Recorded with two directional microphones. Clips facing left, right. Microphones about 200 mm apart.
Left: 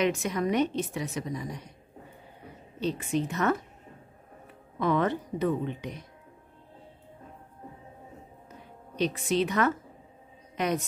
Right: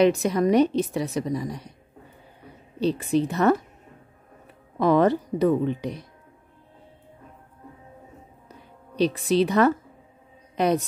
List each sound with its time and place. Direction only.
0.0 s a woman's voice: 35° right (ahead or behind)
2.8 s a woman's voice: 35° right (ahead or behind)
4.7 s a woman's voice: 35° right (ahead or behind)
8.5 s a sound: 35° right (ahead or behind)